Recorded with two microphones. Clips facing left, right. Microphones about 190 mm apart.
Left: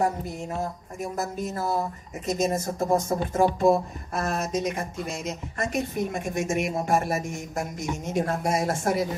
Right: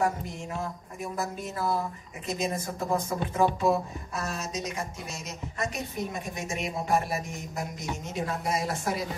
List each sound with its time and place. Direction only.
0.0 s speech: 35° left (ahead or behind)